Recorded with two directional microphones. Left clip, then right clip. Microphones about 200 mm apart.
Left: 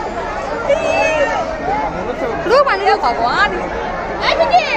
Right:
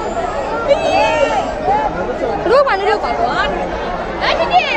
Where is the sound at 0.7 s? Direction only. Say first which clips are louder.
Right 1 dB; 5° right (ahead or behind).